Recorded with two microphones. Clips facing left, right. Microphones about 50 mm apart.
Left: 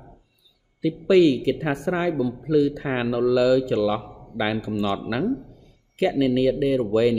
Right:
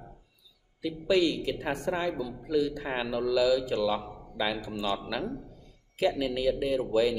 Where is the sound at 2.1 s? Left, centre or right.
Left.